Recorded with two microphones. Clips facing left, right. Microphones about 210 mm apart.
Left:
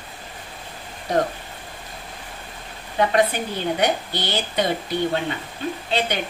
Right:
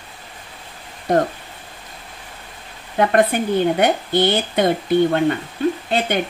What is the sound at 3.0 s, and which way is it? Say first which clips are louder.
Speech: right 3 dB; 50° right (ahead or behind).